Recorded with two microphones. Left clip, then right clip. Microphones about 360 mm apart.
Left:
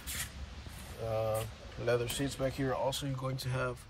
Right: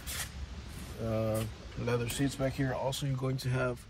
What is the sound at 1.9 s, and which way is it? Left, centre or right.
Speech, centre.